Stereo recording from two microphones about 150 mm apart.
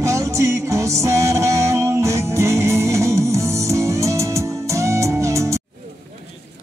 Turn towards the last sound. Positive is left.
turn(degrees=-20)  # may be behind; listen again after turning